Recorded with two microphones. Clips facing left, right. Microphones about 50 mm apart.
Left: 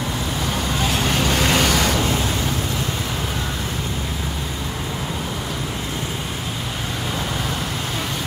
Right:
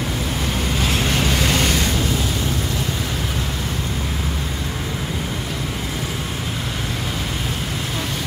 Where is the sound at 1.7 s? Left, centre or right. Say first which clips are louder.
Left 2 dB; left.